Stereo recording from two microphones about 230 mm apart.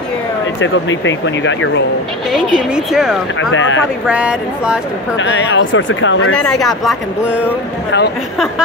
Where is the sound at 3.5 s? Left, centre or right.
Left.